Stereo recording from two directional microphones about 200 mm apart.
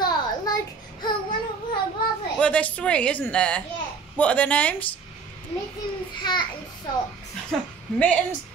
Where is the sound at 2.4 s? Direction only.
5° left (ahead or behind).